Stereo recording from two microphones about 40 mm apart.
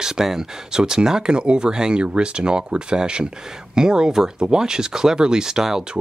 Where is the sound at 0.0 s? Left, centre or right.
Centre.